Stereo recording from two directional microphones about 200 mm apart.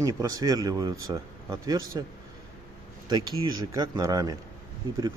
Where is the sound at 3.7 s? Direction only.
20° right (ahead or behind).